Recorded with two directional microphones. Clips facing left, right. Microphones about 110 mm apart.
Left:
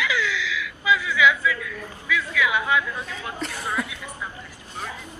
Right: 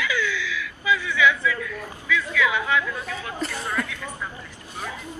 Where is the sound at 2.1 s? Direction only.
15° left (ahead or behind).